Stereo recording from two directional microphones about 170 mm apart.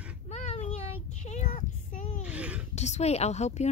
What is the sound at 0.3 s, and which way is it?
Child singing, 40° left (ahead or behind).